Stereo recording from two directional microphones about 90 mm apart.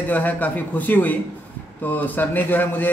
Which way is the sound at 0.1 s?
15° left (ahead or behind).